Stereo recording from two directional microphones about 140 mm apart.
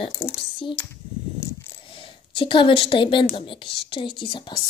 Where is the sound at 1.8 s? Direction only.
40° left (ahead or behind).